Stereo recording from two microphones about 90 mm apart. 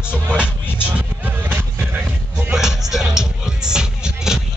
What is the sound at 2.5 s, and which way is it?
Music, 5° right (ahead or behind).